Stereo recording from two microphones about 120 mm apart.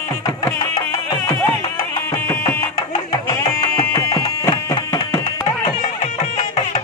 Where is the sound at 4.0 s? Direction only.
30° left (ahead or behind).